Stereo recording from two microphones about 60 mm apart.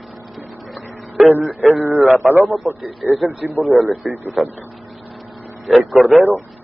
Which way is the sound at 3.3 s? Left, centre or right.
Right.